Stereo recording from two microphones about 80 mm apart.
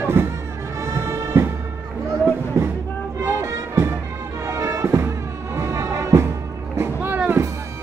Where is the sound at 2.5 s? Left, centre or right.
Right.